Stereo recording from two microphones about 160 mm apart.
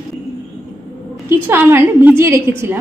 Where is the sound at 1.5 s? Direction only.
15° right (ahead or behind).